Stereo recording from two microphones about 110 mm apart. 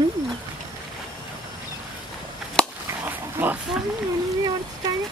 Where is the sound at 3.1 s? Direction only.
15° right (ahead or behind).